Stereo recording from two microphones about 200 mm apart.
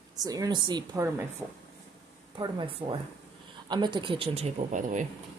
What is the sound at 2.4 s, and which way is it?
Speech, 25° right (ahead or behind).